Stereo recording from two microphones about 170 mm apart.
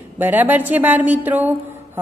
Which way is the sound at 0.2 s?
10° right (ahead or behind).